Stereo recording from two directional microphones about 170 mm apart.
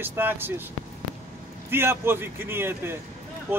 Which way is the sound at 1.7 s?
15° right (ahead or behind).